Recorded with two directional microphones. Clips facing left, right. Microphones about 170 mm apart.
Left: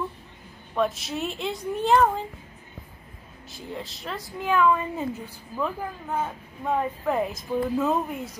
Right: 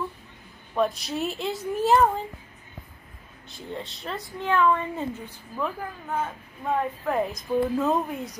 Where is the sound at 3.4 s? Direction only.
Centre (ahead or behind).